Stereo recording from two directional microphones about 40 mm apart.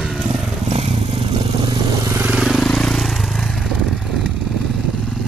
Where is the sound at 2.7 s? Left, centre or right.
Centre.